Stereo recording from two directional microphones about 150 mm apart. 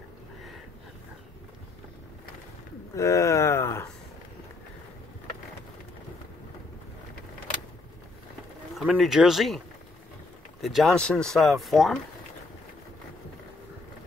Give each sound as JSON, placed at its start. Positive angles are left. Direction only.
{"t": 3.0, "sound": "speech", "side_deg": 20}
{"t": 8.7, "sound": "speech", "side_deg": 0}
{"t": 10.6, "sound": "speech", "side_deg": 0}